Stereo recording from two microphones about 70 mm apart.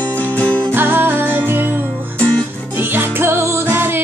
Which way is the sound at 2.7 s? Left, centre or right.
Right.